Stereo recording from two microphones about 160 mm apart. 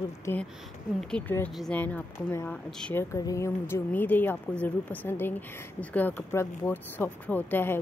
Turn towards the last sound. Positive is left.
turn(degrees=10)  # may be behind; listen again after turning